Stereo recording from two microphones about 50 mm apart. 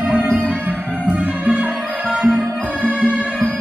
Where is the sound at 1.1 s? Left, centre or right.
Right.